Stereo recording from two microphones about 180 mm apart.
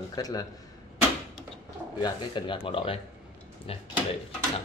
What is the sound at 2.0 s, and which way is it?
A man's voice, 25° left (ahead or behind).